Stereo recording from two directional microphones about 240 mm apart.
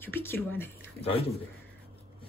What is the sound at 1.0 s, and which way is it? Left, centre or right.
Speech, left.